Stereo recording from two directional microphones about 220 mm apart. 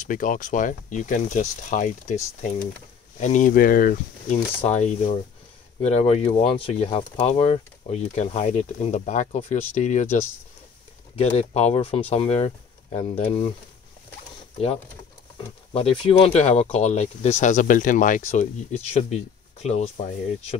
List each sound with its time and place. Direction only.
0.0 s speech: 35° left (ahead or behind)
3.2 s speech: 35° left (ahead or behind)
15.3 s speech: 25° left (ahead or behind)